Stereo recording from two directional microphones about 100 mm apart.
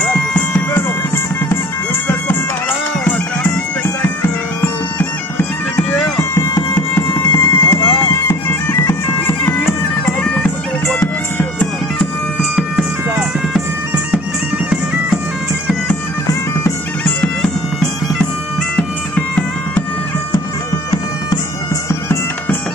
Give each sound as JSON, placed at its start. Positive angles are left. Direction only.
{"t": 0.0, "sound": "bagpipes", "side_deg": 15}
{"t": 3.1, "sound": "bagpipes", "side_deg": 20}
{"t": 5.8, "sound": "bagpipes", "side_deg": 5}
{"t": 6.7, "sound": "music", "side_deg": 20}
{"t": 7.8, "sound": "bagpipes", "side_deg": 20}
{"t": 9.5, "sound": "music", "side_deg": 20}
{"t": 12.5, "sound": "bagpipes", "side_deg": -10}
{"t": 17.0, "sound": "bagpipes", "side_deg": 10}
{"t": 21.8, "sound": "bagpipes", "side_deg": 25}